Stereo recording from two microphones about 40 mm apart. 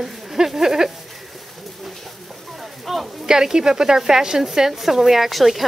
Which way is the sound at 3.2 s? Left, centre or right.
Centre.